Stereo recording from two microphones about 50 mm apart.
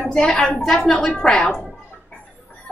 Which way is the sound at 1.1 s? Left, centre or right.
Centre.